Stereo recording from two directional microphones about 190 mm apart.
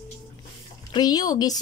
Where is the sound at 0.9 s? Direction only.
20° left (ahead or behind).